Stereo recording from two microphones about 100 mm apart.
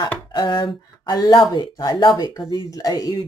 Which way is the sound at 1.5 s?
45° left (ahead or behind).